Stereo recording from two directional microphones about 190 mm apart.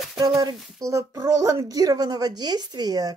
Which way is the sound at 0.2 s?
20° right (ahead or behind).